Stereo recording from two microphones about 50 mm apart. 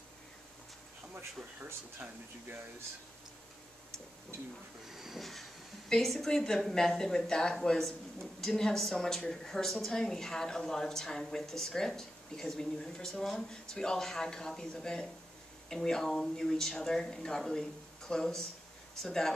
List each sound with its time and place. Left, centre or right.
1.1 s speech: right
4.9 s a woman's voice: centre